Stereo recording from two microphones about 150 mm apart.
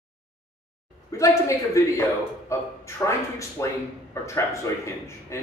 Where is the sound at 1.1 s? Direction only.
20° left (ahead or behind).